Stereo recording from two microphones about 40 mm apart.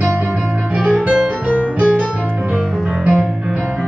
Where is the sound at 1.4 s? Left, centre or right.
Right.